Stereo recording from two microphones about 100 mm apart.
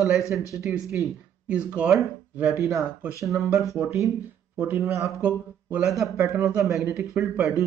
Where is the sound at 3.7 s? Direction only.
25° right (ahead or behind).